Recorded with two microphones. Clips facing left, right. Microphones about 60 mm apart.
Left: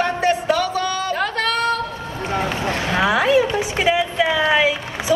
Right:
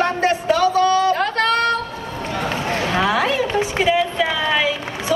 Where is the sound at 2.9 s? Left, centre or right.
Centre.